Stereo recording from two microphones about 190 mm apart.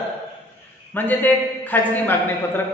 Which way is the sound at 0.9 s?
10° left (ahead or behind).